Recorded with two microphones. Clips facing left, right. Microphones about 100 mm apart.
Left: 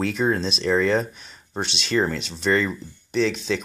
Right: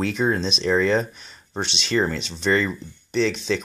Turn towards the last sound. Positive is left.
turn(degrees=0)  # may be behind; listen again after turning